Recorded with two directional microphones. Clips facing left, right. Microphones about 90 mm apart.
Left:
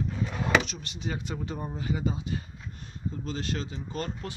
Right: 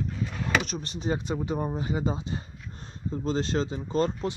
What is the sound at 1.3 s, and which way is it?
Speech, 20° right (ahead or behind).